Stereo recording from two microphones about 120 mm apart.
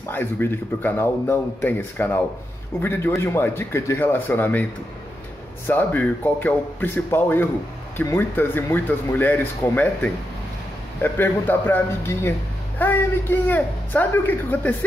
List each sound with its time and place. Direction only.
0.1 s a man's voice: 15° left (ahead or behind)
5.7 s a man's voice: 15° left (ahead or behind)